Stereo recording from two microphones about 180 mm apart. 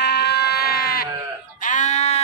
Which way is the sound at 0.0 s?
65° left (ahead or behind).